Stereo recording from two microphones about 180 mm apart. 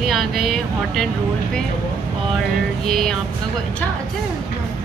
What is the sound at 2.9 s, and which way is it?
Speech, centre (ahead or behind).